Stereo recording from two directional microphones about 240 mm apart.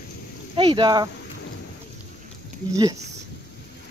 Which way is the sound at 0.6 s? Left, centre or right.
Centre.